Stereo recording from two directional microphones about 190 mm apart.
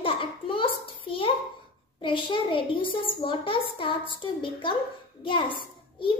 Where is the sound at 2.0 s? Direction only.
25° left (ahead or behind).